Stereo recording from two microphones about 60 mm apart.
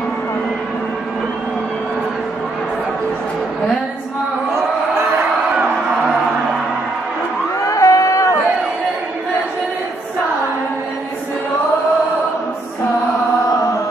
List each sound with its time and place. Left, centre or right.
7.6 s music: left